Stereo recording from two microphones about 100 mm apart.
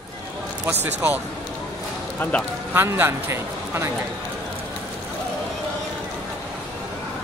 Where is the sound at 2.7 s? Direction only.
25° right (ahead or behind).